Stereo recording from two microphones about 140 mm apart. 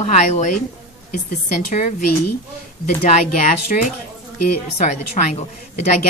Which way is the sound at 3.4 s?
70° left (ahead or behind).